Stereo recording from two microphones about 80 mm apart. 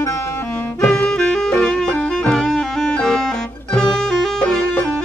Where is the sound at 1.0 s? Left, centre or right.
Centre.